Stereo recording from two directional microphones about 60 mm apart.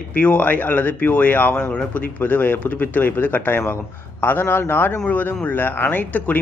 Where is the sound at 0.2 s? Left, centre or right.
Left.